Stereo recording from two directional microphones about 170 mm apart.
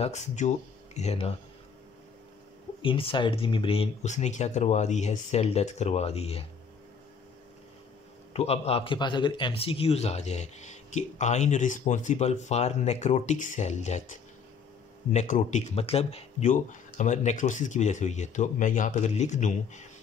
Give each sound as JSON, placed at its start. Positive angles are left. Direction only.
{"t": 0.0, "sound": "speech", "side_deg": 45}
{"t": 2.8, "sound": "speech", "side_deg": 30}
{"t": 8.3, "sound": "speech", "side_deg": 35}
{"t": 15.0, "sound": "speech", "side_deg": 45}